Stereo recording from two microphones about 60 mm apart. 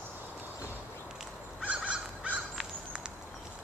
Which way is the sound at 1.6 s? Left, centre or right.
Right.